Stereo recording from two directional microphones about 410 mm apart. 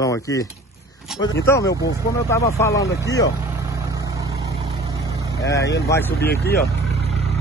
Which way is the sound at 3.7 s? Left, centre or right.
Centre.